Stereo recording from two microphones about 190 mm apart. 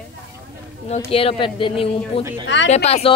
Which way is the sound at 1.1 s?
30° left (ahead or behind).